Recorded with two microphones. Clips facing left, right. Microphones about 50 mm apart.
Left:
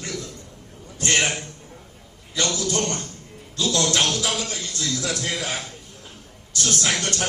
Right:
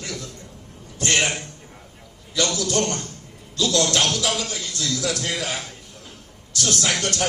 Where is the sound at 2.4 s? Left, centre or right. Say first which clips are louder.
Right 2 dB; left.